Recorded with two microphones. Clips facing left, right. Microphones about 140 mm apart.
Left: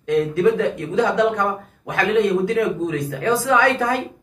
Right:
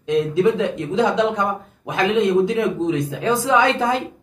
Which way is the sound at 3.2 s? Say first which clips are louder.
Left 1 dB; 20° right (ahead or behind).